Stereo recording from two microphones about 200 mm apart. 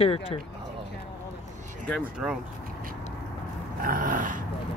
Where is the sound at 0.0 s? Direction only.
30° left (ahead or behind).